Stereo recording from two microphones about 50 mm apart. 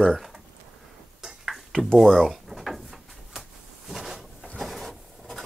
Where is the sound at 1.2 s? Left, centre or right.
Centre.